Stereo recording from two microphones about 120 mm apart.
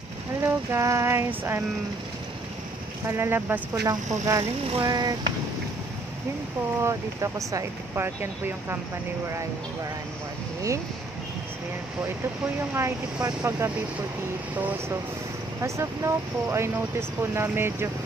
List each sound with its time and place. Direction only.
0.4 s a sound: 20° right (ahead or behind)
3.1 s speech: 20° right (ahead or behind)
3.8 s speech: 30° right (ahead or behind)
6.8 s speech: 25° right (ahead or behind)
12.7 s speech: 25° right (ahead or behind)
15.6 s speech: 25° right (ahead or behind)